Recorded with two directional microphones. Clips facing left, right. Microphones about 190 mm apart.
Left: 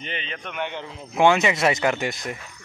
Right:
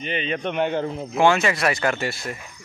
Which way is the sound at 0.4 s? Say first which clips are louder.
Right 9 dB; 35° right (ahead or behind).